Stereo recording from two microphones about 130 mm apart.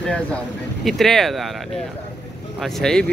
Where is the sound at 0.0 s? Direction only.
5° left (ahead or behind).